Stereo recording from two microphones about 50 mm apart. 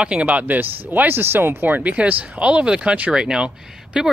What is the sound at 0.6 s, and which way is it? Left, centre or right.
Speech, right.